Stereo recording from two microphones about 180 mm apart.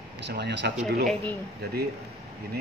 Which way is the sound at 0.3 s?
70° right (ahead or behind).